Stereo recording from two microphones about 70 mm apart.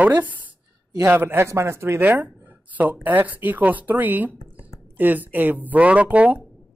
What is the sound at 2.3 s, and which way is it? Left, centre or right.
Speech, right.